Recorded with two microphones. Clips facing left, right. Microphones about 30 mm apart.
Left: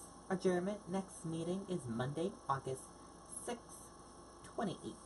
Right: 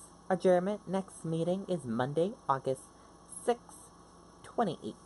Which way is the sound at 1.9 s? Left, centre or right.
Right.